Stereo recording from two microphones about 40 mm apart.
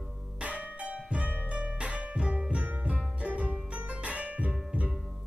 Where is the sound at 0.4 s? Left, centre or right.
Right.